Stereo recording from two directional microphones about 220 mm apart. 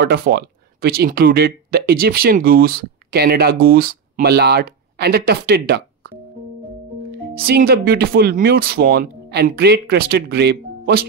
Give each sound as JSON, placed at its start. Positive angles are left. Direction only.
{"t": 0.0, "sound": "speech", "side_deg": -45}
{"t": 7.1, "sound": "speech", "side_deg": -45}